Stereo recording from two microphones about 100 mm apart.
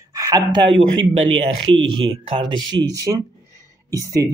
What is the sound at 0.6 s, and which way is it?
Speech, 65° right (ahead or behind).